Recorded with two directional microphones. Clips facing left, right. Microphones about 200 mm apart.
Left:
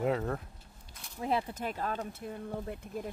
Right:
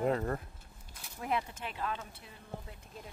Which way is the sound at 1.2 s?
35° left (ahead or behind).